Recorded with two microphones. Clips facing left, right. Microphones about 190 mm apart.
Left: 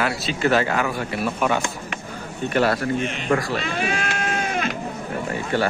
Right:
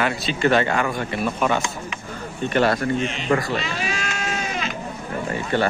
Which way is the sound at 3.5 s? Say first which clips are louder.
Left 2 dB; 55° left (ahead or behind).